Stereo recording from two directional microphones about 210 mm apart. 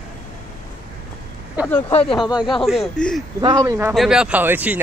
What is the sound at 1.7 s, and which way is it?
Speech, 10° left (ahead or behind).